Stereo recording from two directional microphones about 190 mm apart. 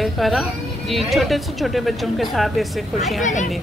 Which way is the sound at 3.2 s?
40° left (ahead or behind).